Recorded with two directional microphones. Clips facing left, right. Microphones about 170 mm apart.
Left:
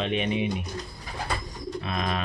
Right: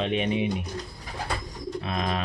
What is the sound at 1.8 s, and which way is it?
Bird, 30° right (ahead or behind).